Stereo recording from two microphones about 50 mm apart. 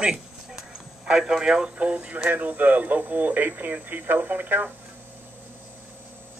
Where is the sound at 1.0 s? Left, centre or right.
Centre.